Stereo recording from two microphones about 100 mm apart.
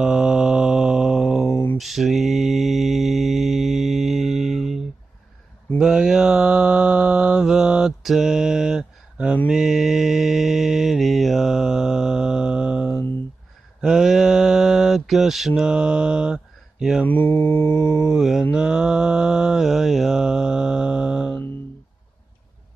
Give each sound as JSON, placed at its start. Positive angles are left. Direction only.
{"t": 0.0, "sound": "mantra", "side_deg": -5}
{"t": 1.5, "sound": "a sound", "side_deg": 25}
{"t": 1.8, "sound": "mantra", "side_deg": 0}
{"t": 17.0, "sound": "mantra", "side_deg": 20}
{"t": 18.0, "sound": "mantra", "side_deg": -5}